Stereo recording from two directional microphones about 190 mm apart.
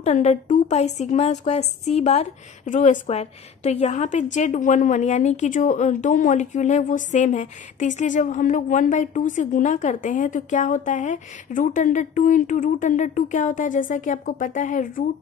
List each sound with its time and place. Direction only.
0.0 s a woman's voice: 35° left (ahead or behind)